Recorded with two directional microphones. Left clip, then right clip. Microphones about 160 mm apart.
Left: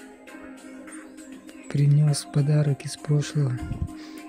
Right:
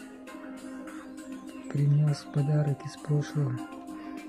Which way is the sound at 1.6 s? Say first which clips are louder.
Left 5 dB; 25° left (ahead or behind).